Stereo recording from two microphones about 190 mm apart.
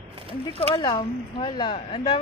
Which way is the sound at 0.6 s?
20° left (ahead or behind).